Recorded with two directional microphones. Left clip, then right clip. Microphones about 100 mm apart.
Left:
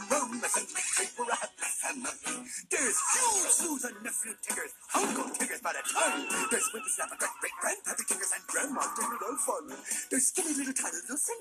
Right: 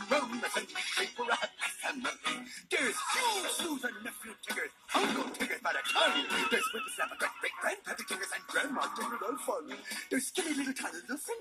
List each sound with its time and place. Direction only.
0.3 s music: 25° left (ahead or behind)
0.6 s music: centre (ahead or behind)
8.5 s music: 25° left (ahead or behind)
8.8 s music: centre (ahead or behind)
10.1 s music: centre (ahead or behind)